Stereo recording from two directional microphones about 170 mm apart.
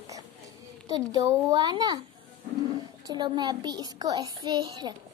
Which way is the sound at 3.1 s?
25° right (ahead or behind).